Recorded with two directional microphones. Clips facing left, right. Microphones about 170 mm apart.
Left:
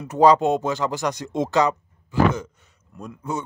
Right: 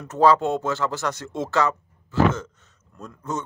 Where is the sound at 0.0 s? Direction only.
15° left (ahead or behind).